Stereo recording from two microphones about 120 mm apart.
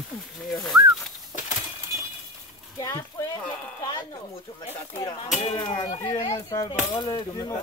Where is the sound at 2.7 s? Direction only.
30° left (ahead or behind).